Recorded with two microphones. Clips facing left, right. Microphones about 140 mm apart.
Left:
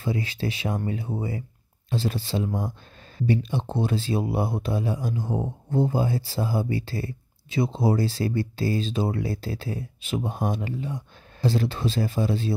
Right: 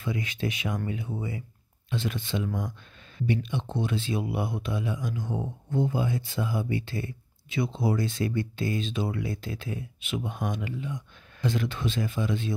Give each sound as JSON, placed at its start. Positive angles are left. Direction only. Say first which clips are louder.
{"t": 0.0, "sound": "speech", "louder": "left 3 dB", "side_deg": 35}